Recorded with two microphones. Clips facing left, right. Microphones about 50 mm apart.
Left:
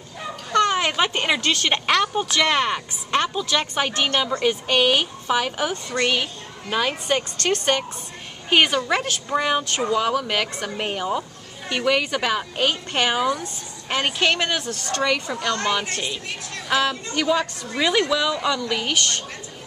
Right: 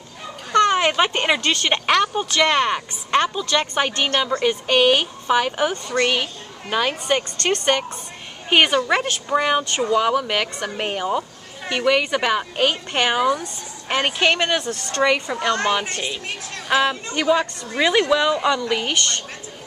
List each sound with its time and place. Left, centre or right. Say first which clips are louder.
0.5 s a sound: right 3 dB; centre
0.7 s a woman's voice: right 3 dB; centre
14.7 s a woman's voice: right 3 dB; right; by 19.0 s centre